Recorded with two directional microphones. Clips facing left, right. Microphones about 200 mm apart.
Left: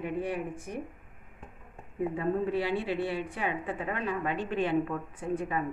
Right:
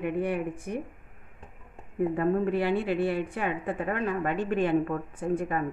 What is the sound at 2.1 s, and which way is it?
A woman's voice, 55° right (ahead or behind).